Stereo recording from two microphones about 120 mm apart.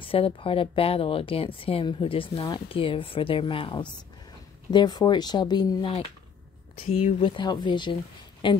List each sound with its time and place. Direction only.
0.0 s speech: 50° left (ahead or behind)
6.9 s speech: 50° left (ahead or behind)